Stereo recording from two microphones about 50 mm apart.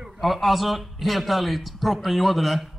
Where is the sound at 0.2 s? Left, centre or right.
Centre.